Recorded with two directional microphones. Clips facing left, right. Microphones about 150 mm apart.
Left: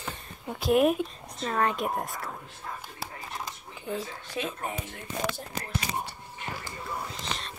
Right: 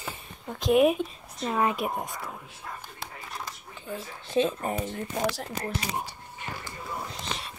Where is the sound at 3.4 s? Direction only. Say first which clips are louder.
Left 1 dB; 15° left (ahead or behind).